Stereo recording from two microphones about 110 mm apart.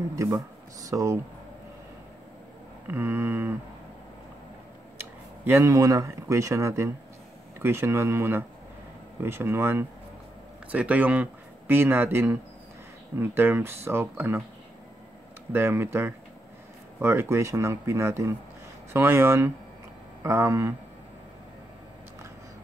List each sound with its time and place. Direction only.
0.2 s speech: 30° right (ahead or behind)
2.9 s speech: 20° right (ahead or behind)
4.9 s speech: 20° right (ahead or behind)
15.5 s speech: 20° right (ahead or behind)